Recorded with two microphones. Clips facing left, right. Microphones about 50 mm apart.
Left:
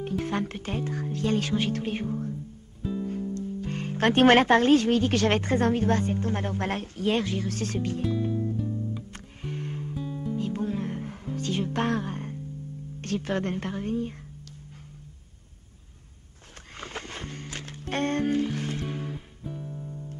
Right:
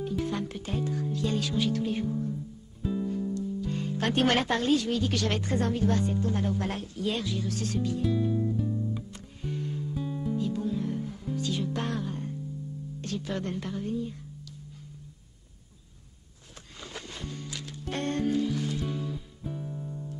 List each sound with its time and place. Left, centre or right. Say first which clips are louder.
0.0 s speech: left 2 dB; left
2.8 s music: even; centre
3.3 s speech: even; left
8.3 s music: even; centre
9.1 s music: even; left
9.9 s music: even; centre
10.3 s music: left 1 dB; left
13.0 s speech: left 5 dB; left
16.5 s a sound: left 4 dB; left
19.4 s music: right 1 dB; centre